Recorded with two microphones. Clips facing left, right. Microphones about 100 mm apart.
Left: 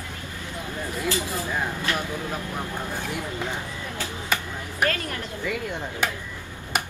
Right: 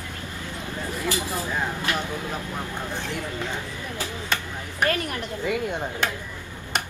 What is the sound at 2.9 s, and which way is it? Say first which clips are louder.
Speech: even; 10° left (ahead or behind).